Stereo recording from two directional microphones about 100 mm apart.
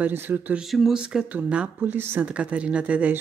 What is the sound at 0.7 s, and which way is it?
Speech, 5° right (ahead or behind).